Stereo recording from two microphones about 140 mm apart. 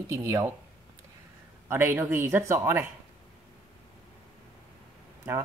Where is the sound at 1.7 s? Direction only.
15° right (ahead or behind).